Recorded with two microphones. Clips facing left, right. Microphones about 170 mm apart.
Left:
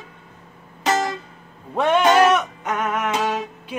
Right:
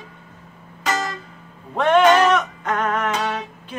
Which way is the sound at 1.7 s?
10° left (ahead or behind).